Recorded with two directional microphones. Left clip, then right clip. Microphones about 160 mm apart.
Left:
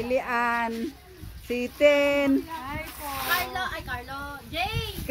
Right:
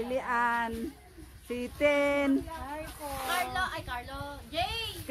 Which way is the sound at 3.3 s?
5° right (ahead or behind).